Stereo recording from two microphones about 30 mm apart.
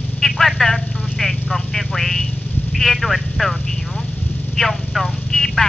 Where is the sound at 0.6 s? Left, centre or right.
Centre.